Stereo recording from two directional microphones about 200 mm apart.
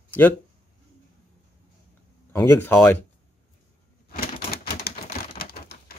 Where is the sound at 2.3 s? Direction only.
10° left (ahead or behind).